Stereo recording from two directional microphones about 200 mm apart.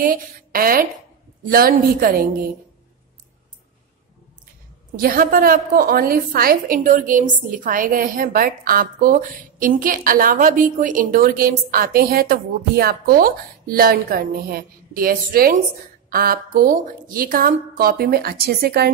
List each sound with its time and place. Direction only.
0.0 s a woman's voice: 45° right (ahead or behind)
4.9 s a woman's voice: 45° right (ahead or behind)